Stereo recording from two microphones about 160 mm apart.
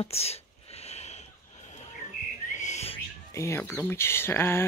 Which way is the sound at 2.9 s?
20° left (ahead or behind).